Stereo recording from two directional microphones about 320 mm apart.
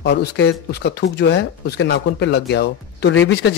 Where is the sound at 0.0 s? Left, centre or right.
Left.